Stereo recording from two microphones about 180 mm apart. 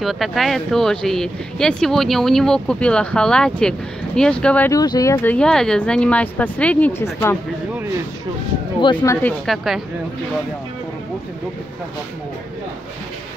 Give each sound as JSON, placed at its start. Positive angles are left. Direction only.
{"t": 0.0, "sound": "speech", "side_deg": 0}
{"t": 4.7, "sound": "speech", "side_deg": 20}
{"t": 8.8, "sound": "speech", "side_deg": 15}